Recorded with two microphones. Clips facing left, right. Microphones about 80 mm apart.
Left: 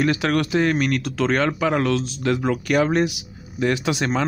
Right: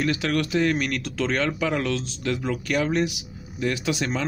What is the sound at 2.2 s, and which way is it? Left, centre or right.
Speech, left.